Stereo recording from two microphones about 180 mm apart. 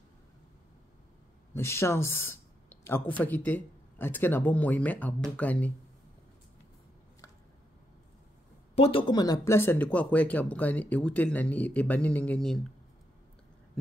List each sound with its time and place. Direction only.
1.5 s speech: 15° left (ahead or behind)
8.7 s speech: 30° left (ahead or behind); by 12.6 s 5° left (ahead or behind)